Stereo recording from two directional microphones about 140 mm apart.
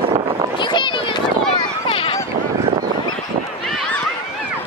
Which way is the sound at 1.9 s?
40° left (ahead or behind).